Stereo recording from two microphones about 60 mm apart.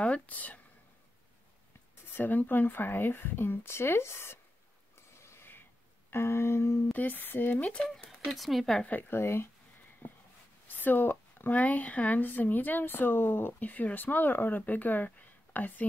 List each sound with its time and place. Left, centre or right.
0.0 s speech: left
2.1 s speech: left
4.9 s snort: left
6.0 s a sound: left
6.9 s speech: left
7.7 s speech: centre
8.8 s speech: left
9.2 s a sound: left
10.0 s a sound: left
10.8 s speech: left